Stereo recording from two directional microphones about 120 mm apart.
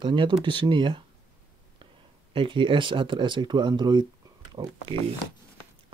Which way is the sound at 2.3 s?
45° right (ahead or behind).